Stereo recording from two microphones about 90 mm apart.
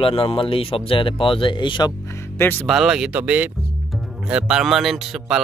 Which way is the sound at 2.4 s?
20° left (ahead or behind).